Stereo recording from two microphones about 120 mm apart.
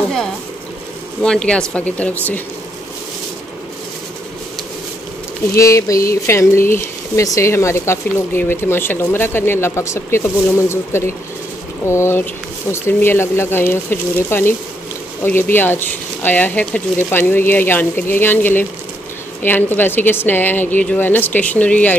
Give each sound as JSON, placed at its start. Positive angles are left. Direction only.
{"t": 1.2, "sound": "speech", "side_deg": 10}
{"t": 5.5, "sound": "speech", "side_deg": 25}